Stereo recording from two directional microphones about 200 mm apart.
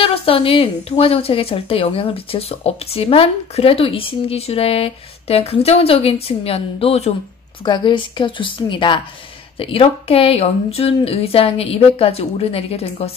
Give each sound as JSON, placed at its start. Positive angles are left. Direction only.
{"t": 0.0, "sound": "speech", "side_deg": 30}